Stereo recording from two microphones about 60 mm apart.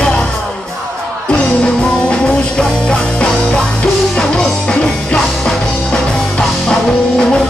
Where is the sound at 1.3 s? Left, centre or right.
Centre.